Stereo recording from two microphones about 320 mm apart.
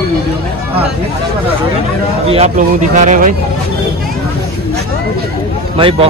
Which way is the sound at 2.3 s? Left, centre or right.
Right.